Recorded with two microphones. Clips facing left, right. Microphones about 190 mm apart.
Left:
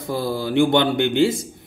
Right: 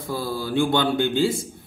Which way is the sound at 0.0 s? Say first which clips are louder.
Left 4 dB; 20° left (ahead or behind).